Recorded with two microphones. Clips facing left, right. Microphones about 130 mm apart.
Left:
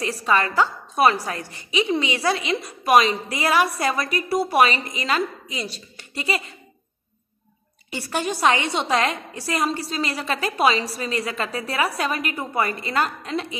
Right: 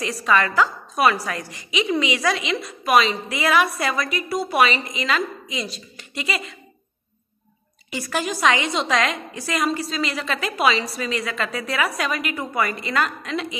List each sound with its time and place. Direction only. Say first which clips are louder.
0.0 s a woman's voice: right 1 dB; 30° left (ahead or behind)
7.9 s a woman's voice: even; 30° left (ahead or behind)